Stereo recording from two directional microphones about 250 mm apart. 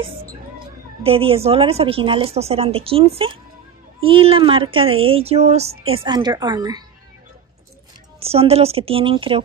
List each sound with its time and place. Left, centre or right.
1.0 s speech: right
8.2 s speech: right